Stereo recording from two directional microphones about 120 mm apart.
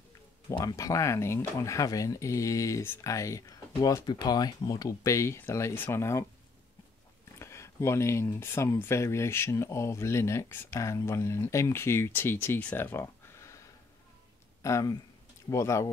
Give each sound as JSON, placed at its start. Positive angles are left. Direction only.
{"t": 0.6, "sound": "speech", "side_deg": 30}
{"t": 7.3, "sound": "speech", "side_deg": 25}
{"t": 14.6, "sound": "speech", "side_deg": 25}